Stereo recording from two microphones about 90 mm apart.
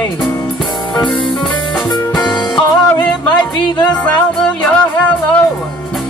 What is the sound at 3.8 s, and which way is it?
Music, 10° left (ahead or behind).